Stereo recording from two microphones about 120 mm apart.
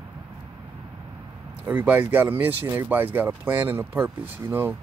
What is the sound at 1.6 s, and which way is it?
Speech, 15° right (ahead or behind).